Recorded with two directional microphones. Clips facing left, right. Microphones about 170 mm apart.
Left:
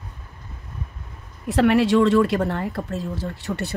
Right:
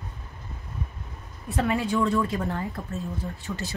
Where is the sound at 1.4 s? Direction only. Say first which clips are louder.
Left 9 dB; 80° left.